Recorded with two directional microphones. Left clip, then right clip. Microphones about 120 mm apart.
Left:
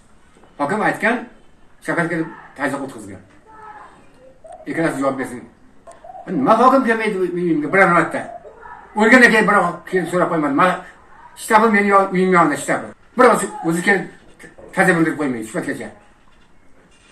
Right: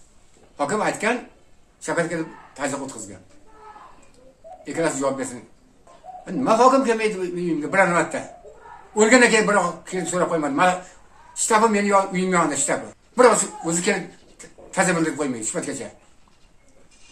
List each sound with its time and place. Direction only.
0.6 s a man's voice: 30° right (ahead or behind)
4.6 s speech: 30° right (ahead or behind)
6.2 s a man's voice: 30° right (ahead or behind)